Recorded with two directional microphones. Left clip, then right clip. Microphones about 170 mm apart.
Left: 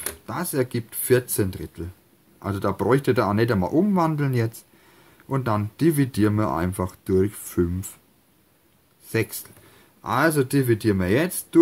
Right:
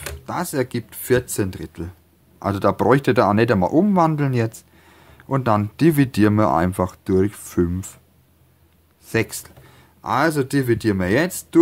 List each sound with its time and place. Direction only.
0.0 s speech: 25° right (ahead or behind)
9.0 s speech: 25° right (ahead or behind)